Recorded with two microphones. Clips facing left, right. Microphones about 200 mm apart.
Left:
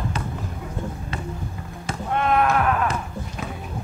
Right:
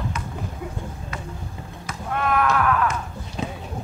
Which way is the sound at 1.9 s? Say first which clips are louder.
Left 2 dB; 25° left (ahead or behind).